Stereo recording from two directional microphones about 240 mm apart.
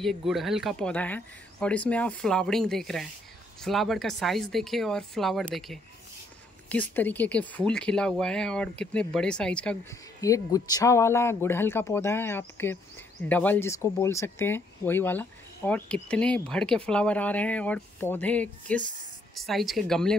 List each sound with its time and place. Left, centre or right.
0.0 s speech: centre